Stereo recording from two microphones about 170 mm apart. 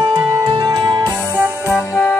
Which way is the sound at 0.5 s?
30° right (ahead or behind).